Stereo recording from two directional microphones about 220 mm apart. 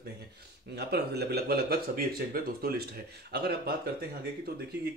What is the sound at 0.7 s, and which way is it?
Speech, 45° right (ahead or behind).